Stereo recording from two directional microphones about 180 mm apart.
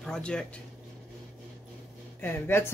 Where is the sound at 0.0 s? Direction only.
5° left (ahead or behind).